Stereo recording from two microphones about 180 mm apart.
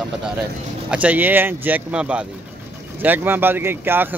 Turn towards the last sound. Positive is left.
turn(degrees=-10)  # may be behind; listen again after turning